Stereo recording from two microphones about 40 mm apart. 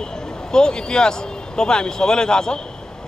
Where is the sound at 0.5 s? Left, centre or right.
Centre.